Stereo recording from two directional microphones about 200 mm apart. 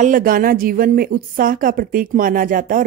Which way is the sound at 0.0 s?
45° right (ahead or behind).